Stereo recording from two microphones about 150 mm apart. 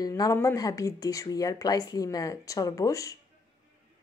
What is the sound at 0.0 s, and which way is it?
Speech, 25° left (ahead or behind).